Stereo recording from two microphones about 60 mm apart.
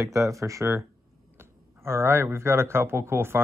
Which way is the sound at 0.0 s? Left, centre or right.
Right.